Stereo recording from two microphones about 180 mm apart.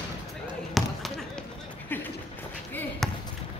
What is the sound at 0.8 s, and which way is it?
Basketball bounce, centre (ahead or behind).